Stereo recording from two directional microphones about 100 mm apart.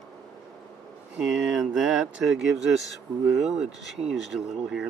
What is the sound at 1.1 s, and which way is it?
Speech, 10° right (ahead or behind).